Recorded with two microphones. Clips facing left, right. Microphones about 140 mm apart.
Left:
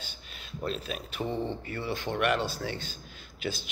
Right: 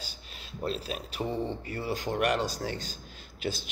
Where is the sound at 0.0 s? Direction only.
35° right (ahead or behind).